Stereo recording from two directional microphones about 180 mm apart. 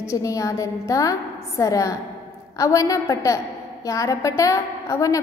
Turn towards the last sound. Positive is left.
turn(degrees=20)  # may be behind; listen again after turning